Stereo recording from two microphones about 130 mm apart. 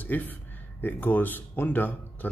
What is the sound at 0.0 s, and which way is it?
A man's voice, 15° left (ahead or behind).